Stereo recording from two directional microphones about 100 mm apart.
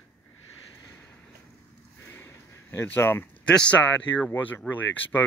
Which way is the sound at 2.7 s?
20° left (ahead or behind).